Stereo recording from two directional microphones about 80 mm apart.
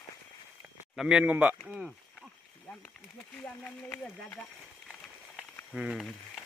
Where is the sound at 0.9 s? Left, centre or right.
Centre.